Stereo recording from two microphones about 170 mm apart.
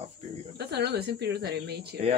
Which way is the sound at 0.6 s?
75° right (ahead or behind).